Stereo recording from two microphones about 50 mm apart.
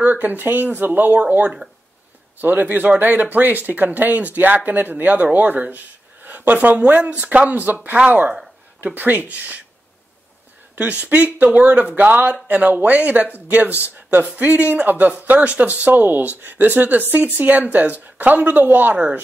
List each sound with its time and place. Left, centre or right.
0.0 s speech: right
10.8 s speech: right